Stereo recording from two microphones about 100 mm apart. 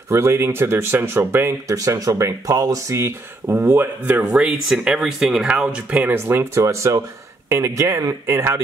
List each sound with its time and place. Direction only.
0.1 s speech: 25° right (ahead or behind)
4.3 s speech: 5° right (ahead or behind); by 8.6 s 30° right (ahead or behind)